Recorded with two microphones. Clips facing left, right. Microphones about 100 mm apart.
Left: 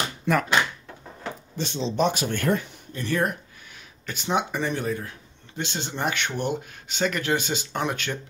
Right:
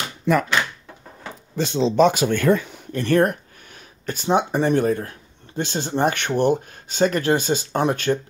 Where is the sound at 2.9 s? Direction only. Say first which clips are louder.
Right 8 dB; 65° right (ahead or behind).